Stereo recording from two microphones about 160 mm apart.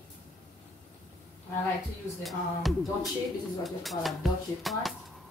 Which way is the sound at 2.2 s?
Centre (ahead or behind).